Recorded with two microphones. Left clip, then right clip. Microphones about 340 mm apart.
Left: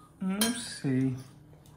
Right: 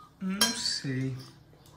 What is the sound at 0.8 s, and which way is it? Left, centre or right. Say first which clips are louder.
Cutlery: left 5 dB; centre.